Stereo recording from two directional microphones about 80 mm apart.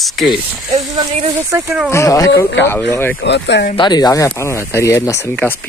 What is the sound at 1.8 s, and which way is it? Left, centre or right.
Speech, left.